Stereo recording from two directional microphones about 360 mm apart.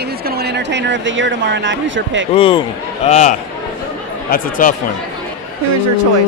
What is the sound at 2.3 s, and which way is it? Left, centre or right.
Speech, centre.